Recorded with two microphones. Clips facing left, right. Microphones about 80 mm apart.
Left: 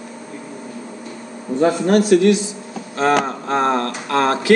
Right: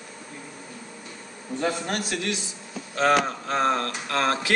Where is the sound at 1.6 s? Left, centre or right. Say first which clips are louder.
Left 12 dB; left.